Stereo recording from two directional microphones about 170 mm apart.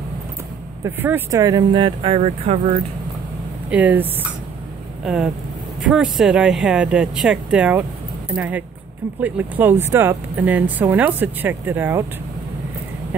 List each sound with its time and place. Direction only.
0.8 s speech: 10° right (ahead or behind); by 2.8 s 35° right (ahead or behind)
3.7 s speech: 10° right (ahead or behind)